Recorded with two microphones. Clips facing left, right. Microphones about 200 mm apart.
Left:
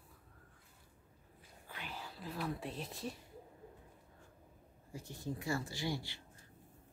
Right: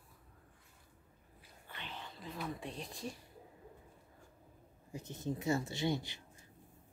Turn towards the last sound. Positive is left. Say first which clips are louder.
# right 4 dB
turn(degrees=-20)  # may be behind; listen again after turning